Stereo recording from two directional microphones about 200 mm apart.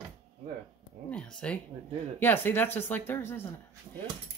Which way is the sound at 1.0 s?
5° left (ahead or behind).